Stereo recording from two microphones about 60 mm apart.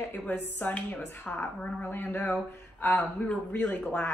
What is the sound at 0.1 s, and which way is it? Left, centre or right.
Speech, left.